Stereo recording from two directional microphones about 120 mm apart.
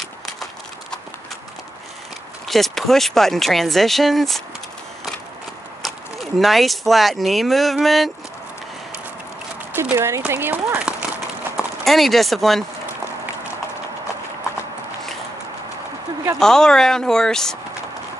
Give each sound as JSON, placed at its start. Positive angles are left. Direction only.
{"t": 2.4, "sound": "speech", "side_deg": 0}
{"t": 5.8, "sound": "speech", "side_deg": 0}
{"t": 9.8, "sound": "speech", "side_deg": -20}
{"t": 11.8, "sound": "speech", "side_deg": 0}
{"t": 16.3, "sound": "speech", "side_deg": 5}